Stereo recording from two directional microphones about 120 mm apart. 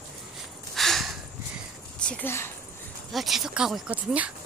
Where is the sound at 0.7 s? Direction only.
Centre (ahead or behind).